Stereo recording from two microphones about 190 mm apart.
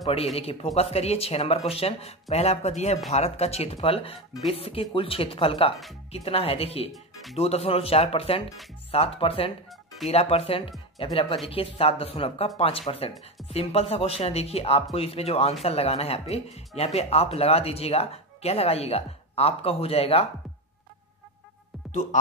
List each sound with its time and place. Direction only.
0.4 s speech: 30° left (ahead or behind)
6.9 s speech: centre (ahead or behind)
7.3 s speech: 35° left (ahead or behind)